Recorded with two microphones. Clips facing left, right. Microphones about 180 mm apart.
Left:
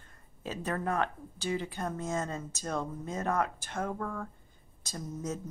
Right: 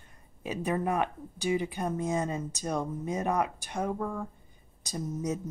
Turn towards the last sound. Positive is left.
turn(degrees=-15)  # may be behind; listen again after turning